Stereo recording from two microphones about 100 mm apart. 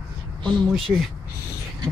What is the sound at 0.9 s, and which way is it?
Speech, 15° right (ahead or behind).